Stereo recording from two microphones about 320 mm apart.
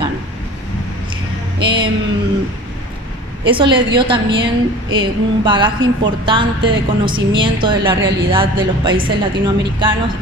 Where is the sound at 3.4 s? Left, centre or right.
Centre.